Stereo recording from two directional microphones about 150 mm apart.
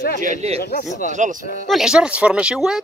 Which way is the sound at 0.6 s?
90° left.